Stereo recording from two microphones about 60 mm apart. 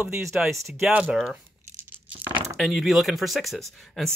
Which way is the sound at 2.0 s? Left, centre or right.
Right.